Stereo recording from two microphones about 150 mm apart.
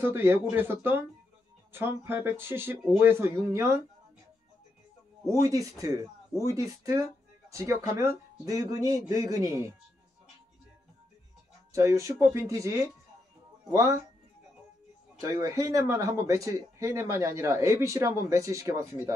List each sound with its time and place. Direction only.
0.0 s speech: 15° right (ahead or behind)
5.4 s speech: 20° right (ahead or behind)
11.7 s speech: 20° right (ahead or behind)
15.1 s speech: 20° right (ahead or behind)